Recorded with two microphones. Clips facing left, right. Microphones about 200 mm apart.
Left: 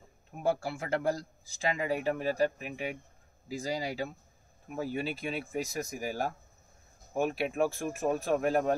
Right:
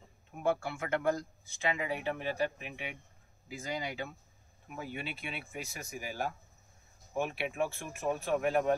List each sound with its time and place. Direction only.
0.4 s speech: 35° left (ahead or behind)